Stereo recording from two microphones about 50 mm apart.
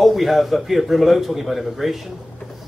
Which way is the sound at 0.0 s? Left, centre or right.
Centre.